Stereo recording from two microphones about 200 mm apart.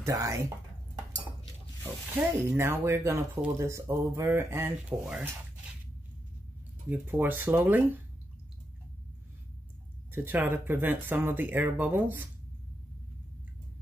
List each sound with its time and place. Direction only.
0.0 s speech: 15° right (ahead or behind)
1.8 s speech: 10° right (ahead or behind)
6.9 s speech: 10° right (ahead or behind)
10.1 s speech: 10° right (ahead or behind)